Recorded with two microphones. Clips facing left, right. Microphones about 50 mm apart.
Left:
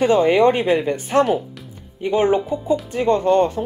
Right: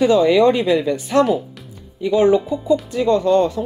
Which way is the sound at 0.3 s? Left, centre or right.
Left.